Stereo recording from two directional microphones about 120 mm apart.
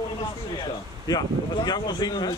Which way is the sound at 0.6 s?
35° left (ahead or behind).